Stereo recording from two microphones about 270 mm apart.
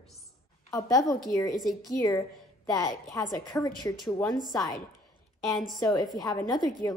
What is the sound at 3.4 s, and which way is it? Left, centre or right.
Speech, centre.